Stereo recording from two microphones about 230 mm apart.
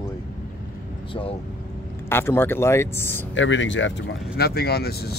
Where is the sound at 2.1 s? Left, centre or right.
Centre.